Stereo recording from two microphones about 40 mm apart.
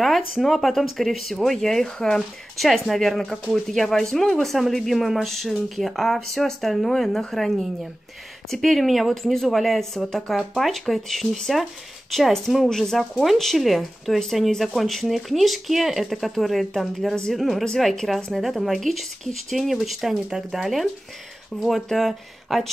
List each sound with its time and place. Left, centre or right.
0.0 s speech: centre
9.8 s speech: centre
17.1 s speech: centre
17.4 s speech: centre
20.0 s speech: centre